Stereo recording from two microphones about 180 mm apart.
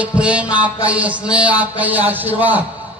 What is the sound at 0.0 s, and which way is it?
Speech, 5° right (ahead or behind).